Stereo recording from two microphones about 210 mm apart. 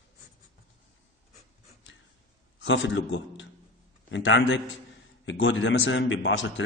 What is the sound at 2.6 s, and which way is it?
A man's voice, 60° left (ahead or behind).